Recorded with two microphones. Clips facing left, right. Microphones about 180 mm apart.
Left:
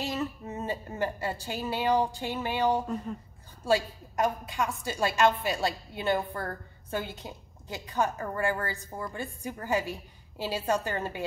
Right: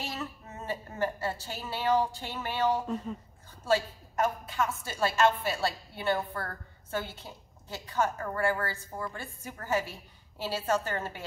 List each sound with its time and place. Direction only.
0.0 s a woman's voice: 15° left (ahead or behind)